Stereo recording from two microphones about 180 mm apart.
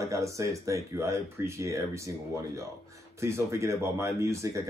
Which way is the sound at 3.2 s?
15° right (ahead or behind).